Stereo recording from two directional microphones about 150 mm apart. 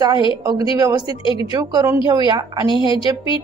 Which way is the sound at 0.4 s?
25° right (ahead or behind).